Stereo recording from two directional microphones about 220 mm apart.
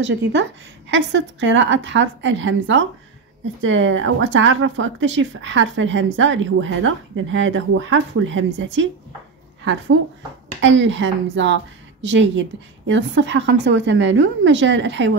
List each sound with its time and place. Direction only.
0.0 s speech: 55° right (ahead or behind)
10.6 s speech: 55° right (ahead or behind)